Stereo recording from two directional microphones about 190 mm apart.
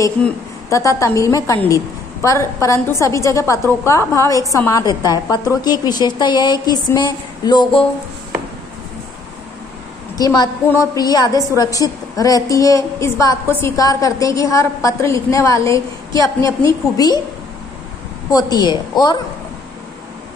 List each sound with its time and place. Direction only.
0.7 s a woman's voice: 15° left (ahead or behind)
10.1 s a woman's voice: 20° left (ahead or behind)
18.3 s a woman's voice: 20° left (ahead or behind)